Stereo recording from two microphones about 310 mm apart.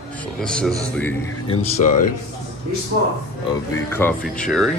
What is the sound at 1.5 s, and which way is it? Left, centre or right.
Speech, left.